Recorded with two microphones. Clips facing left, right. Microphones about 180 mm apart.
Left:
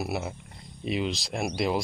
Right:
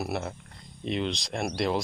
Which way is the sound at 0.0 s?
5° left (ahead or behind).